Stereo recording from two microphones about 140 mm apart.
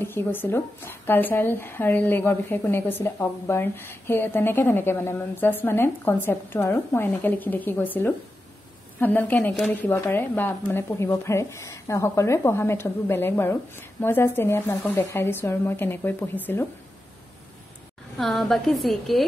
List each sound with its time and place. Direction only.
0.0 s speech: 15° left (ahead or behind)
18.1 s a woman's voice: centre (ahead or behind)